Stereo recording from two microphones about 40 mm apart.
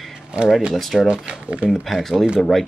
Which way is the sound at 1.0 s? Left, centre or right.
Right.